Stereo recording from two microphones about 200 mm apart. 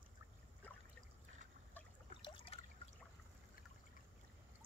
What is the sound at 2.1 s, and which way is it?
Trickle, 25° left (ahead or behind).